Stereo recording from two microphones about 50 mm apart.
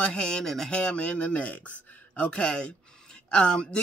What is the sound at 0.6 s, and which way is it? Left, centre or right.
Speech, left.